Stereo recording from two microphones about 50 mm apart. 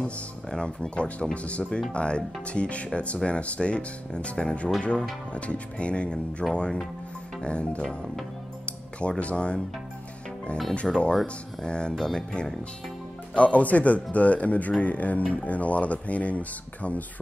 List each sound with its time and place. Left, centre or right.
0.5 s speech: centre
8.6 s music: left
10.7 s speech: left